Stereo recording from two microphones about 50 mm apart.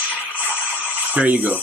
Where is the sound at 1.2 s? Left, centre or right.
Right.